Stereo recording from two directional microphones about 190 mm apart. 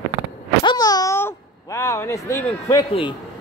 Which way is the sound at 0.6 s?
20° left (ahead or behind).